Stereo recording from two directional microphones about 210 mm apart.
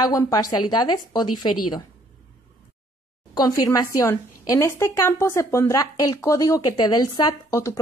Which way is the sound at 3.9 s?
15° left (ahead or behind).